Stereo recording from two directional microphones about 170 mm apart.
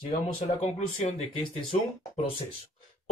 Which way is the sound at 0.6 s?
40° left (ahead or behind).